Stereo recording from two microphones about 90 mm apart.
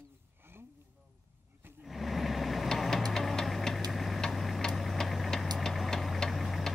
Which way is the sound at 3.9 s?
Centre (ahead or behind).